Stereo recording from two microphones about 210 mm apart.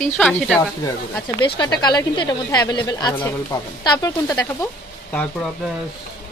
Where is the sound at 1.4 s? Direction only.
20° left (ahead or behind).